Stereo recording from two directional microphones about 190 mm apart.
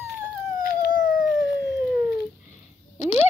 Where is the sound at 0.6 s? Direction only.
50° left (ahead or behind).